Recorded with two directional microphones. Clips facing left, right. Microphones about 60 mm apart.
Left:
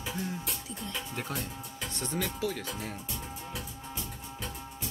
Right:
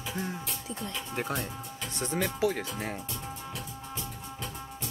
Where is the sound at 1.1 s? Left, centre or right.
Right.